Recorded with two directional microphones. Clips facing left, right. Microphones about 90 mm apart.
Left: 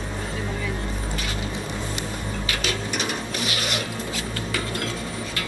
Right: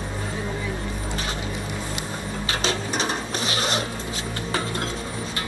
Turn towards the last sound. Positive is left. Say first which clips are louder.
# right 2 dB
turn(degrees=-30)  # may be behind; listen again after turning